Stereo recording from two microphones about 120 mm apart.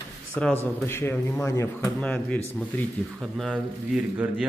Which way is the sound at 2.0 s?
10° left (ahead or behind).